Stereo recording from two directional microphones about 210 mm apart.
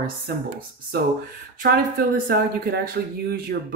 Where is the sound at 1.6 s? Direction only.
40° right (ahead or behind).